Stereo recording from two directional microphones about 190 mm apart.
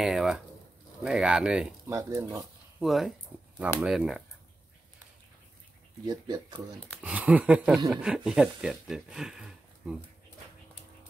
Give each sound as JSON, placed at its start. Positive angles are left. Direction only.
{"t": 0.0, "sound": "speech", "side_deg": 0}
{"t": 2.0, "sound": "speech", "side_deg": -15}
{"t": 2.8, "sound": "speech", "side_deg": 0}
{"t": 6.0, "sound": "speech", "side_deg": -20}
{"t": 7.0, "sound": "speech", "side_deg": -5}